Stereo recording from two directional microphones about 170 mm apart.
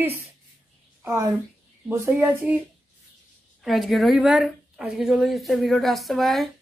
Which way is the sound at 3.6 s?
Centre (ahead or behind).